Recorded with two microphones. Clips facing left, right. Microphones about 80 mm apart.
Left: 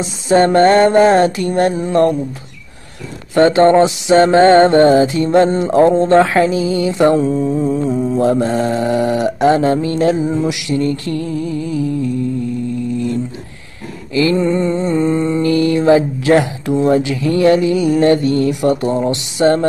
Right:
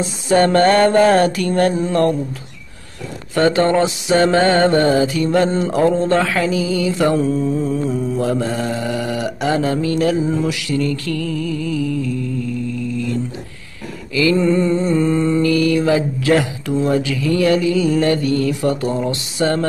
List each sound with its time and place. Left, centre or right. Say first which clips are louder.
0.0 s mantra: left 2 dB; left
3.3 s mantra: left 5 dB; left